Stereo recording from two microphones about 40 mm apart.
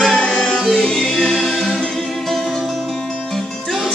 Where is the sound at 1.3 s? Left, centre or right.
Centre.